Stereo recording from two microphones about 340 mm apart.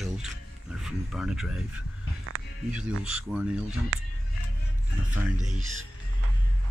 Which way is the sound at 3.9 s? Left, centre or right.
Right.